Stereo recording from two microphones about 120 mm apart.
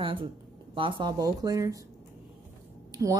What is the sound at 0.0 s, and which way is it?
Speech, 45° right (ahead or behind).